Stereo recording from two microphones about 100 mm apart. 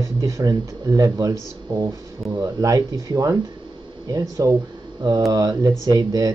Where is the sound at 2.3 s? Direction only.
35° right (ahead or behind).